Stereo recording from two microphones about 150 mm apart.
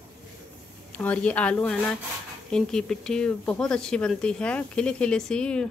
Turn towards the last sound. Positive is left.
turn(degrees=5)  # may be behind; listen again after turning